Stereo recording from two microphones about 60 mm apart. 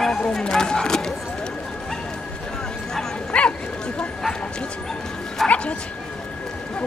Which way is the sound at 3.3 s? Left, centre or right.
Centre.